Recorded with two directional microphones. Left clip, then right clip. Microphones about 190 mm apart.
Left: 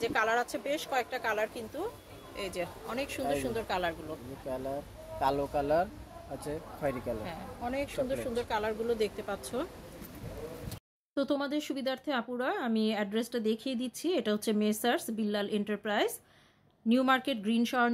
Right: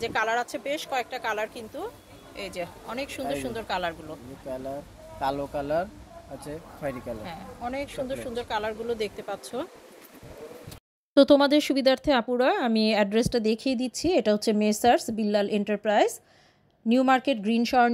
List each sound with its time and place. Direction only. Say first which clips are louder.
0.0 s speech: right 3 dB; 5° right (ahead or behind)
7.2 s speech: right 3 dB; 5° right (ahead or behind)
11.1 s speech: right 14 dB; 45° right (ahead or behind); by 17.9 s 25° right (ahead or behind)